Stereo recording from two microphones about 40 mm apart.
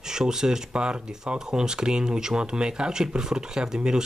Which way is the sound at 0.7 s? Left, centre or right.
Right.